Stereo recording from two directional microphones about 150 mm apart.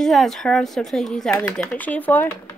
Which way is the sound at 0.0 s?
Centre (ahead or behind).